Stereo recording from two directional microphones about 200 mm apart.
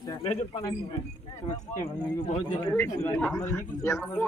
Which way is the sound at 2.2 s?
35° left (ahead or behind).